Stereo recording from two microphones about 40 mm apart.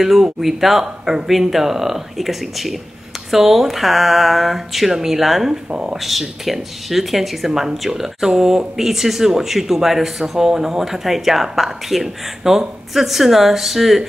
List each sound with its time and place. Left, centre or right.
0.0 s speech: centre
5.7 s speech: right
5.9 s speech: centre